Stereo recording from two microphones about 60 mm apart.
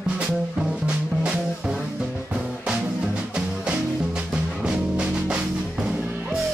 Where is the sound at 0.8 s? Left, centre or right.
Centre.